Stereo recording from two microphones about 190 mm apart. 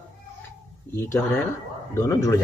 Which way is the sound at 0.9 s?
15° left (ahead or behind).